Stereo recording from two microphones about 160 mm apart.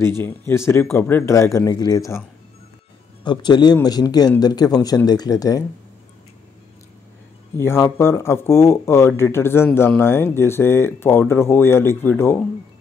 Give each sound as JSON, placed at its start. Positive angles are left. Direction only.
{"t": 0.0, "sound": "speech", "side_deg": 15}
{"t": 3.3, "sound": "speech", "side_deg": 25}
{"t": 7.5, "sound": "speech", "side_deg": 15}